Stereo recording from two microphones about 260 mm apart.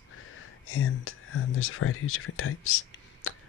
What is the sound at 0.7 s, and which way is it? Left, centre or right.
Speech, left.